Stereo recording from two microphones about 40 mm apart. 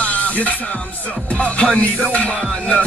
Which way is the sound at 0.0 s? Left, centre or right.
Left.